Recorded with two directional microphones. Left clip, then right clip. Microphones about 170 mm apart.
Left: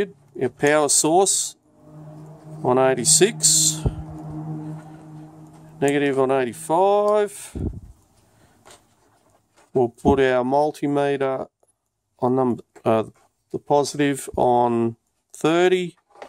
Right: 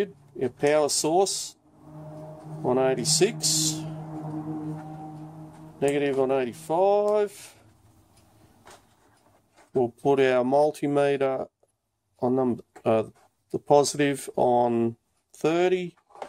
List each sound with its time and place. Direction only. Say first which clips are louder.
0.0 s speech: left 4 dB; 35° left (ahead or behind)
2.6 s speech: left 6 dB; 40° left (ahead or behind)
5.8 s speech: left 4 dB; 35° left (ahead or behind)
9.8 s speech: left 4 dB; 35° left (ahead or behind)
13.5 s speech: even; 10° left (ahead or behind)
13.9 s speech: left 3 dB; 30° left (ahead or behind)